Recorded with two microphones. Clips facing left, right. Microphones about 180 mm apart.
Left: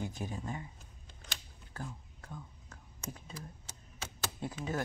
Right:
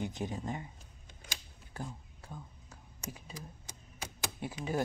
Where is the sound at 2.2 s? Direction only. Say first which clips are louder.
Even; 10° right (ahead or behind).